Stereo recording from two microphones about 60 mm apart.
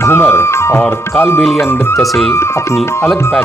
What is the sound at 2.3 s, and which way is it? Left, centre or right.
Speech, left.